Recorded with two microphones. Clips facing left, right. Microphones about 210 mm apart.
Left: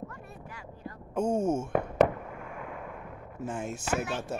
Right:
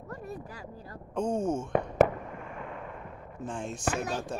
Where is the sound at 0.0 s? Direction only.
40° right (ahead or behind).